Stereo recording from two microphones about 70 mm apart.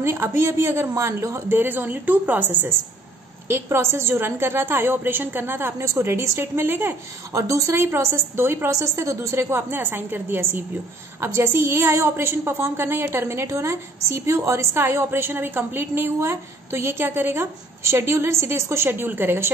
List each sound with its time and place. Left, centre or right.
0.0 s a woman's voice: right
3.4 s a woman's voice: right
7.3 s a woman's voice: right
7.7 s a woman's voice: right
8.6 s a woman's voice: right